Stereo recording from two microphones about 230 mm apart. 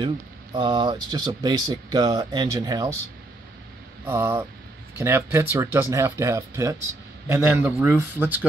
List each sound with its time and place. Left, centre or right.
0.0 s speech: right
4.0 s speech: centre